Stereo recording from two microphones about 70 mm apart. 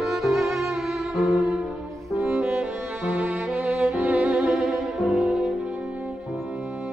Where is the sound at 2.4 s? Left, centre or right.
Right.